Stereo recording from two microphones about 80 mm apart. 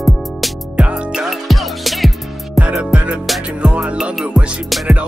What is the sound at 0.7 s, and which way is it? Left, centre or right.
Music, centre.